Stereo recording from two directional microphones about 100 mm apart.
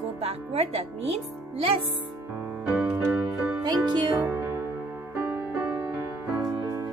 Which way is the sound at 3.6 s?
45° right (ahead or behind).